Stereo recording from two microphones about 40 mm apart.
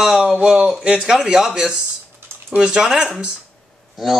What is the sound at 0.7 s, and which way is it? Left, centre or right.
Speech, right.